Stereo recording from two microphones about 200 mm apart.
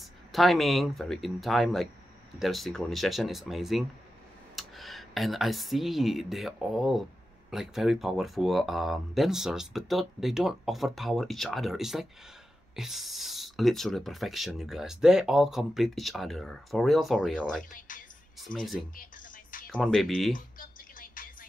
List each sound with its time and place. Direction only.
0.3 s speech: centre (ahead or behind)
17.7 s music: 40° left (ahead or behind)
18.4 s speech: centre (ahead or behind)
20.3 s music: 45° left (ahead or behind)